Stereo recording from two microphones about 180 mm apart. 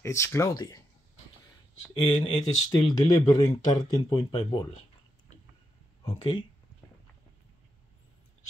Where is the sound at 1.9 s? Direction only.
25° left (ahead or behind).